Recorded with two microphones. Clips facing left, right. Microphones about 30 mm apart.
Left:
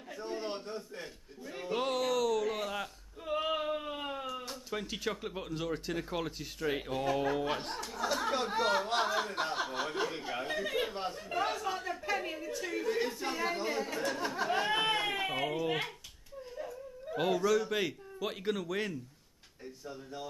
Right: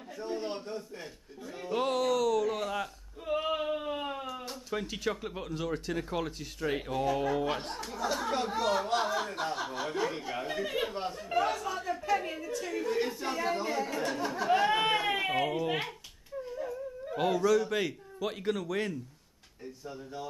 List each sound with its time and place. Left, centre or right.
0.2 s a sound: centre
4.2 s speech: centre
8.5 s speech: left; by 18.9 s centre